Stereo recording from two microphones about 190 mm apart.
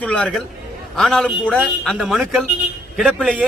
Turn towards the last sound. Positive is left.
turn(degrees=-5)  # may be behind; listen again after turning